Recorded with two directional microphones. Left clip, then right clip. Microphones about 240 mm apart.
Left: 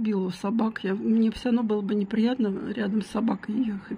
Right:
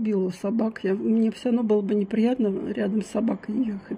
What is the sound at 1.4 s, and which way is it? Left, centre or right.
Speech, left.